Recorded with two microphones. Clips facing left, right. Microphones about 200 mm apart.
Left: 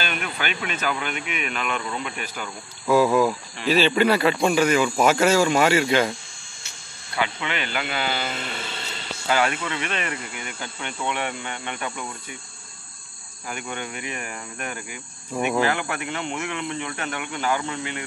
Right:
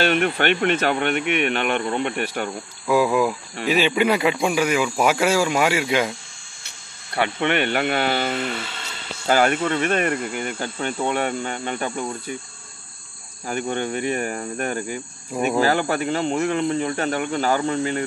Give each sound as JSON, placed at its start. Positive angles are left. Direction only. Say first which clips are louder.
{"t": 0.0, "sound": "speech", "louder": "right 10 dB", "side_deg": -65}
{"t": 2.9, "sound": "speech", "louder": "even", "side_deg": -15}
{"t": 7.3, "sound": "speech", "louder": "right 8 dB", "side_deg": -60}
{"t": 9.3, "sound": "speech", "louder": "right 5 dB", "side_deg": -45}
{"t": 13.5, "sound": "speech", "louder": "right 8 dB", "side_deg": -35}